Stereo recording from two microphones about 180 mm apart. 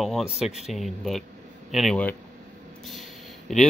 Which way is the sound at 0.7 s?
Centre (ahead or behind).